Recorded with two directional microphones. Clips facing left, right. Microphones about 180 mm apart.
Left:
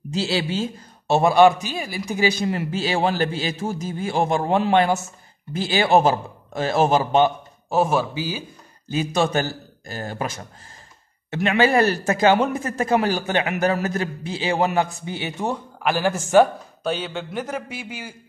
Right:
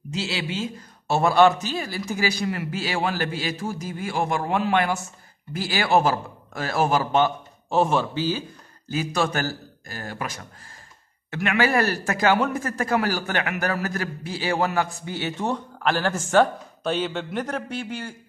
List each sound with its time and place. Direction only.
0.1 s speech: 35° left (ahead or behind)
1.0 s a man's voice: 20° left (ahead or behind)
7.7 s a man's voice: 5° left (ahead or behind)
8.9 s a man's voice: 20° left (ahead or behind); by 18.1 s 5° left (ahead or behind)